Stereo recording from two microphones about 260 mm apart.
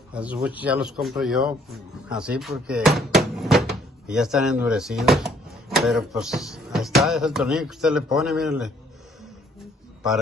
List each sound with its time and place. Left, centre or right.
0.1 s a man's voice: centre